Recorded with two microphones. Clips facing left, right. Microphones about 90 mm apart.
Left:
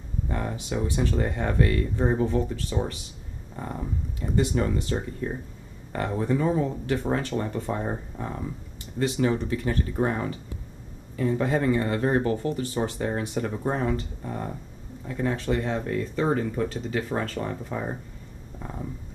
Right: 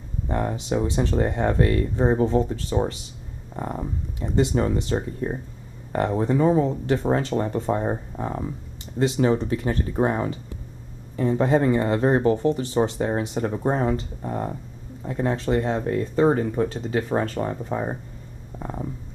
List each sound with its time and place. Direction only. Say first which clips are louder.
0.3 s speech: right 6 dB; 30° right (ahead or behind)
4.4 s speech: right 4 dB; 25° right (ahead or behind)